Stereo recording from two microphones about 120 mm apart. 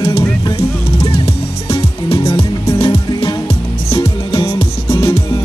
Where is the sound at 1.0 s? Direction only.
55° left (ahead or behind).